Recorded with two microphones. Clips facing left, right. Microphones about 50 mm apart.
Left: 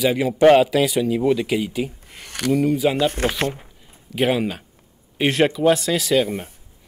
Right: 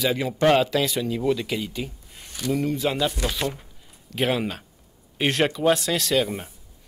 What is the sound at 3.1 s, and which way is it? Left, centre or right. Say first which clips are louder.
Speech: left 5 dB; left.